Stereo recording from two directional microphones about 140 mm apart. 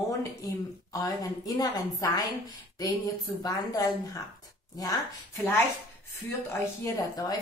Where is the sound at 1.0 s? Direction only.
25° left (ahead or behind).